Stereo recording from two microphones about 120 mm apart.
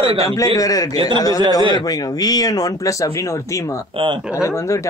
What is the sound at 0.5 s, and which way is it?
Speech, 30° left (ahead or behind).